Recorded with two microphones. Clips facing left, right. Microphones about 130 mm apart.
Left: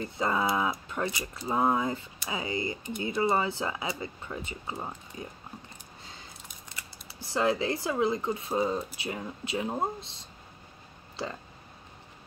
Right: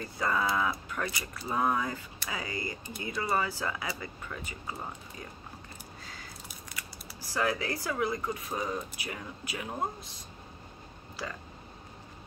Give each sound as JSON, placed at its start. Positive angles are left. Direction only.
{"t": 0.0, "sound": "speech", "side_deg": 25}